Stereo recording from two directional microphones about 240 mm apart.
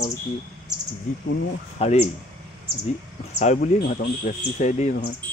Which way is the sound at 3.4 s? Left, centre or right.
Left.